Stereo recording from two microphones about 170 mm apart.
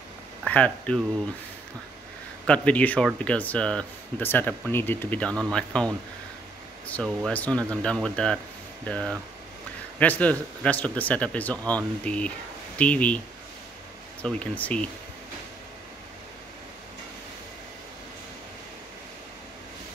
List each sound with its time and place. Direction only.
0.5 s speech: 10° left (ahead or behind)
2.4 s speech: 5° left (ahead or behind)
6.9 s speech: 5° left (ahead or behind)
14.2 s speech: 10° left (ahead or behind)